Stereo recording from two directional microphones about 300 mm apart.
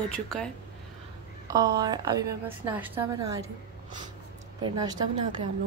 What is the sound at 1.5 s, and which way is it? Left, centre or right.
A woman's voice, centre.